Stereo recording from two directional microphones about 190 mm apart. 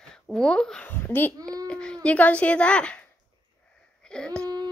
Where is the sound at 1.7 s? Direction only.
5° left (ahead or behind).